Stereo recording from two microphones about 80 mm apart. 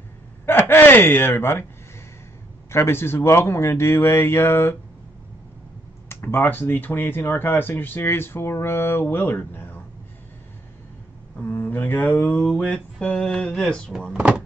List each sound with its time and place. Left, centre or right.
0.5 s speech: left
2.7 s speech: left
6.0 s speech: left
11.3 s speech: left
12.4 s mantra: centre
14.1 s speech: centre